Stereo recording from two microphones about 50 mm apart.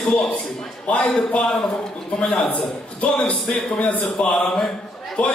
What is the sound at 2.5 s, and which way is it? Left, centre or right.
Speech, left.